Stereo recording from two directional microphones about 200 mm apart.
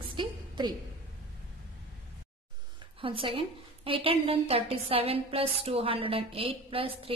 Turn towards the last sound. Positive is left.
turn(degrees=-30)  # may be behind; listen again after turning